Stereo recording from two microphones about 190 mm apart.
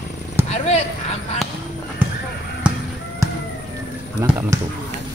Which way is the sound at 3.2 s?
15° right (ahead or behind).